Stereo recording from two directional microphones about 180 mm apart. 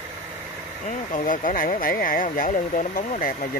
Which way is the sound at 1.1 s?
50° left (ahead or behind).